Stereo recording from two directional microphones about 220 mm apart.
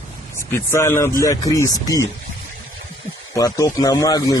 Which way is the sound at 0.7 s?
10° left (ahead or behind).